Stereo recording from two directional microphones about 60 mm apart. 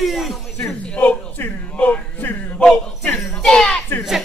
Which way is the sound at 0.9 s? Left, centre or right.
Centre.